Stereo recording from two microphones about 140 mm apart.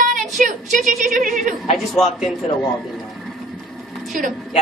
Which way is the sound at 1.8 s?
Centre (ahead or behind).